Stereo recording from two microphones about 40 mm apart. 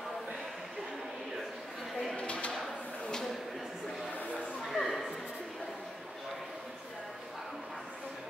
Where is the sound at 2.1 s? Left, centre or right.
Left.